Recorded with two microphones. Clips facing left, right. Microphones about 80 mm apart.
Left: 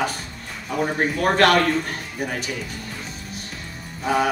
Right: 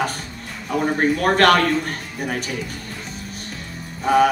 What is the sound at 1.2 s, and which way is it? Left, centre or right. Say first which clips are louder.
Speech: right 1 dB; right.